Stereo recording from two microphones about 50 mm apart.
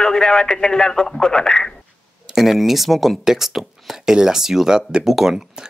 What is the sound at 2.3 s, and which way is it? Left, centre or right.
Speech, centre.